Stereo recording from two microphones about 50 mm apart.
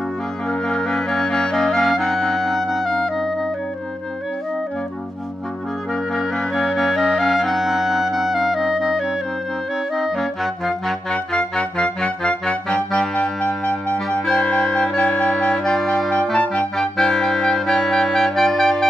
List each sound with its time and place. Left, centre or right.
0.5 s music: centre
6.1 s clarinet: centre